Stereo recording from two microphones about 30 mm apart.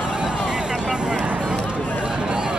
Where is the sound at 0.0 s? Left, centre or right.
Right.